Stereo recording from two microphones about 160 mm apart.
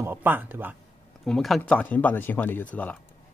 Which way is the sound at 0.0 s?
10° right (ahead or behind).